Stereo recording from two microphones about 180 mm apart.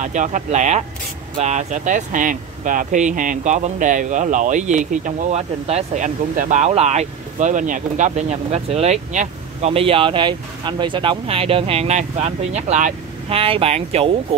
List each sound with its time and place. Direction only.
0.0 s speech: 45° right (ahead or behind)